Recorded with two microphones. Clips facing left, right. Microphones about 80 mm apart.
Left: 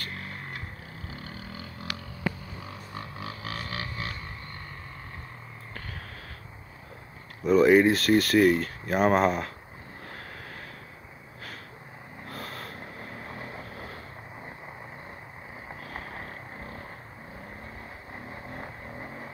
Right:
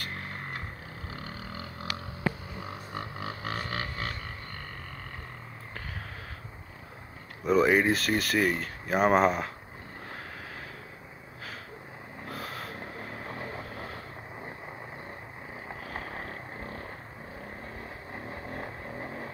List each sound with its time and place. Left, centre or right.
0.1 s a sound: right
1.1 s vehicle: right
2.6 s a sound: right
7.4 s speech: centre
12.3 s snort: centre
15.7 s vehicle: centre
18.3 s vehicle: right